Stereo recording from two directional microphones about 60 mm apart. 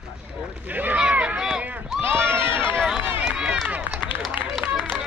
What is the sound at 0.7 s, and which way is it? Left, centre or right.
Speech, right.